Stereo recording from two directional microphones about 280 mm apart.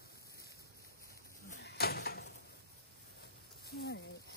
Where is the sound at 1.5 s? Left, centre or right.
Left.